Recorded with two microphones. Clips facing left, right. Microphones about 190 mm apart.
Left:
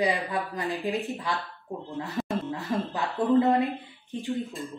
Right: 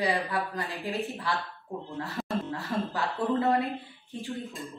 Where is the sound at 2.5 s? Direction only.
20° left (ahead or behind).